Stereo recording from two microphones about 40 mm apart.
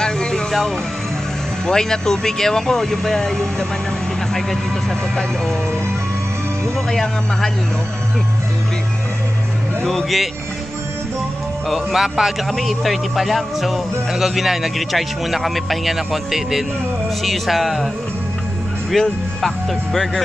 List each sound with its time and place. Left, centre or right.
0.0 s vehicle: centre
0.5 s speech: centre
1.7 s speech: centre
6.9 s speech: centre
9.8 s speech: centre
11.7 s speech: centre
12.4 s speech: centre
18.9 s speech: centre